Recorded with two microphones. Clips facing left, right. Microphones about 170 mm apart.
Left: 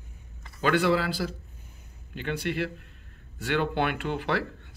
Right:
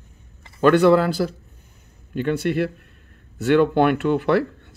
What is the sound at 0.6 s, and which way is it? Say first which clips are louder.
Speech: right 9 dB; 50° right (ahead or behind).